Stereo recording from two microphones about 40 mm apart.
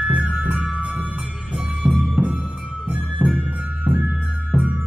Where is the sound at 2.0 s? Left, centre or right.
Right.